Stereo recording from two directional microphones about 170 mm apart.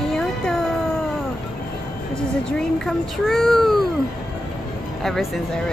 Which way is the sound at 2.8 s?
Centre (ahead or behind).